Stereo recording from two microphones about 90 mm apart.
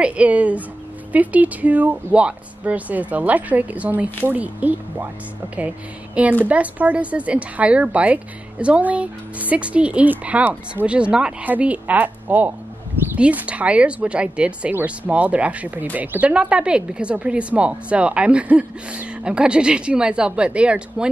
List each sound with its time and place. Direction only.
0.0 s speech: 15° right (ahead or behind)
6.4 s speech: 15° right (ahead or behind)